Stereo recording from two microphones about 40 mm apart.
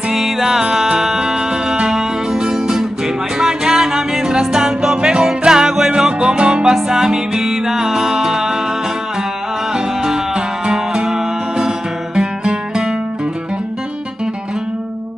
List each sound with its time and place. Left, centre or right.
0.1 s music: centre; by 6.7 s right
6.7 s music: centre